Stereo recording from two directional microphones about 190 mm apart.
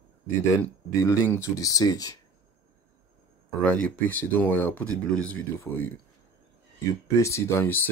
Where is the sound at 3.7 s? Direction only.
10° left (ahead or behind).